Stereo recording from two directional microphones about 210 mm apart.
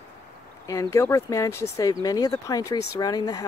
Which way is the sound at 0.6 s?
15° left (ahead or behind).